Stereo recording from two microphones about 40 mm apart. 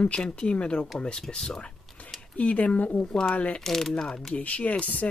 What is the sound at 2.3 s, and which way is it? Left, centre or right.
Speech, left.